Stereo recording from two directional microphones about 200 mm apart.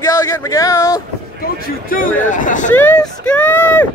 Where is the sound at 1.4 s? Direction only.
45° left (ahead or behind).